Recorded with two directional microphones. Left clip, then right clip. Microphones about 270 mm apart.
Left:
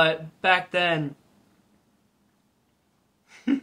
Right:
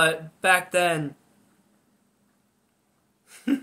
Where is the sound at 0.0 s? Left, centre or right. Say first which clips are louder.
Even; centre.